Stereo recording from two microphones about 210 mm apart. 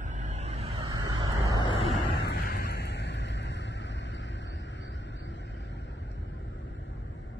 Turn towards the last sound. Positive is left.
turn(degrees=60)  # may be behind; listen again after turning